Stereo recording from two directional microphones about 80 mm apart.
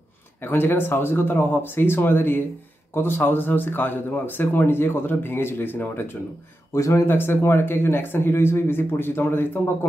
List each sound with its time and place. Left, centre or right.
0.4 s speech: left
6.7 s speech: left
7.1 s speech: left